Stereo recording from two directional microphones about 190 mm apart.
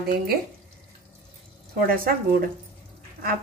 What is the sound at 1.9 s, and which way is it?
Speech, 50° right (ahead or behind).